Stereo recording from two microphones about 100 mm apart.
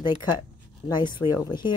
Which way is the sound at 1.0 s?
50° left (ahead or behind).